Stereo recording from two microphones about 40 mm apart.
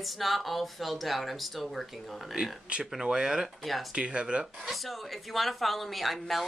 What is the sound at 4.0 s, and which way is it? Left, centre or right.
Speech, right.